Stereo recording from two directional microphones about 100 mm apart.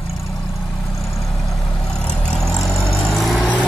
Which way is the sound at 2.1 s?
5° left (ahead or behind).